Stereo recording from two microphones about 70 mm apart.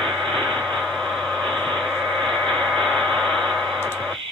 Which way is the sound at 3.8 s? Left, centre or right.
Right.